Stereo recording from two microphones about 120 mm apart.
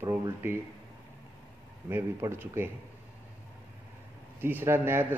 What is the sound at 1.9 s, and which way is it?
Speech, 20° right (ahead or behind).